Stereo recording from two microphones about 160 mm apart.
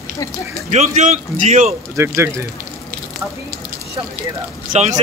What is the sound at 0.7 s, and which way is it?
A man's voice, 45° right (ahead or behind).